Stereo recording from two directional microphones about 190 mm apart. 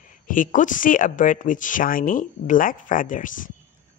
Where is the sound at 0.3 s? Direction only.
45° left (ahead or behind).